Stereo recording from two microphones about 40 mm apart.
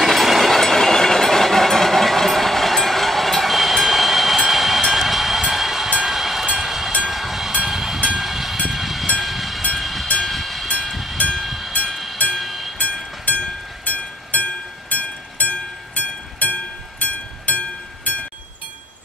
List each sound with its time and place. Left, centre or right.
0.0 s train: centre
11.9 s music: centre
12.4 s train: centre
13.2 s music: left
18.1 s a sound: left